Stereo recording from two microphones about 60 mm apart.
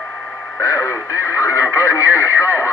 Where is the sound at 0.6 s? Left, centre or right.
Left.